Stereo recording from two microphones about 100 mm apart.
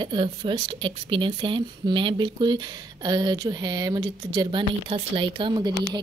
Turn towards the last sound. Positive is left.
turn(degrees=-45)  # may be behind; listen again after turning